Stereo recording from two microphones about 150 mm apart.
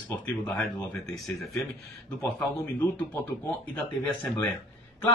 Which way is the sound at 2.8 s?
10° left (ahead or behind).